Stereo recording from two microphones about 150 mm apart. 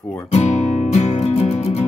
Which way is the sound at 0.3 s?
45° left (ahead or behind).